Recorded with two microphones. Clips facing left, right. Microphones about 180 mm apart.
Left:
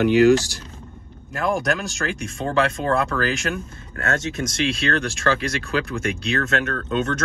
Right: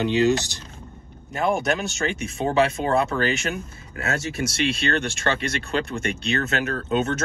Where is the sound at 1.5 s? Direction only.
Centre (ahead or behind).